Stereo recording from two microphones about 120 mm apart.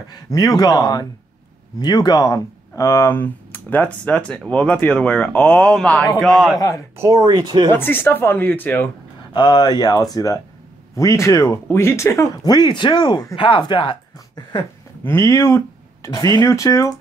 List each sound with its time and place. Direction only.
0.1 s a woman's voice: 30° left (ahead or behind); by 6.6 s centre (ahead or behind)
7.0 s speech: 30° right (ahead or behind)
7.7 s speech: 15° left (ahead or behind)
9.3 s a woman's voice: 40° left (ahead or behind)
15.0 s speech: 25° left (ahead or behind)
16.1 s speech: 35° left (ahead or behind)